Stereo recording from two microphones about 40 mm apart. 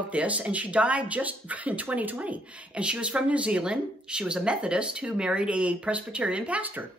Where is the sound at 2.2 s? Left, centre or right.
Right.